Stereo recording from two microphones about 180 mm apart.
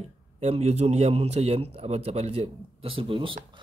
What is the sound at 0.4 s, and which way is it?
Speech, 35° right (ahead or behind).